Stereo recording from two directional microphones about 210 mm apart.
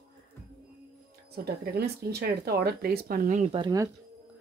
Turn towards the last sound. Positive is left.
turn(degrees=-20)  # may be behind; listen again after turning